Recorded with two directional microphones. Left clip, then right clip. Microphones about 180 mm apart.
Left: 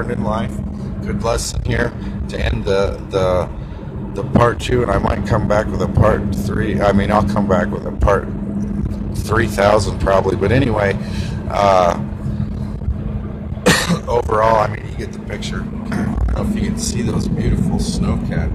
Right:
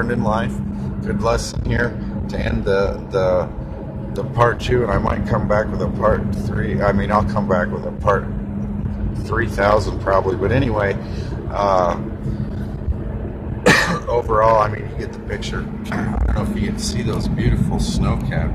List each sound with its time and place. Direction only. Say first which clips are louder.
0.0 s speech: right 1 dB; centre (ahead or behind)
9.3 s speech: left 3 dB; 20° left (ahead or behind)
13.7 s throat clearing: right 1 dB; 20° left (ahead or behind)
16.6 s speech: left 2 dB; 15° left (ahead or behind)